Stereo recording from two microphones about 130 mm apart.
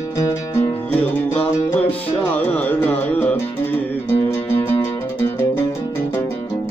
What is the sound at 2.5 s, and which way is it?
Carnatic music, 15° left (ahead or behind).